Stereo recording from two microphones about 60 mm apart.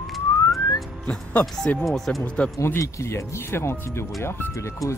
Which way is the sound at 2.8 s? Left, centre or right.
Left.